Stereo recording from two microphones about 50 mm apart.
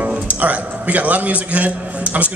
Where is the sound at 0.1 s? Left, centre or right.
Right.